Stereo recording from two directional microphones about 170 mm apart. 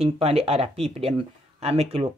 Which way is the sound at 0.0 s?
35° right (ahead or behind).